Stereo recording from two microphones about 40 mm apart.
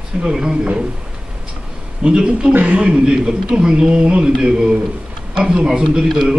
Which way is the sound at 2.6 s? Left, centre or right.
Right.